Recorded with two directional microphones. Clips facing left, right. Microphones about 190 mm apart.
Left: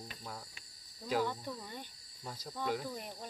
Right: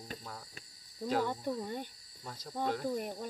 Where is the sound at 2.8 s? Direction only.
50° right (ahead or behind).